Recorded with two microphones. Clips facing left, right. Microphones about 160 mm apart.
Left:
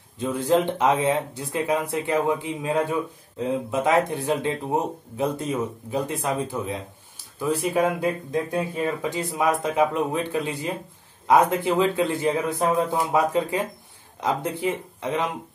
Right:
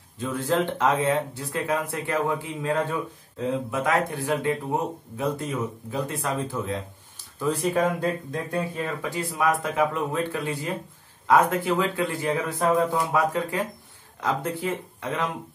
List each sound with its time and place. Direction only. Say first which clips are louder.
0.2 s speech: left 3 dB; 20° left (ahead or behind)